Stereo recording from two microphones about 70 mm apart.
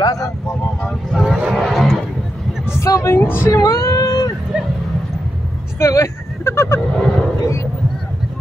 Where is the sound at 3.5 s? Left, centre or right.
Left.